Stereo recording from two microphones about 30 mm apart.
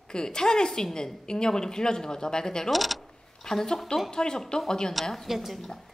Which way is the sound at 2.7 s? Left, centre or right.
Centre.